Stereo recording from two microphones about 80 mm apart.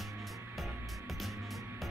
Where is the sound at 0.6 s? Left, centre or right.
Centre.